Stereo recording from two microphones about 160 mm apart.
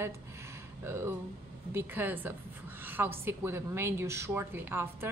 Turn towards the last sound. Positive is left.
turn(degrees=-15)  # may be behind; listen again after turning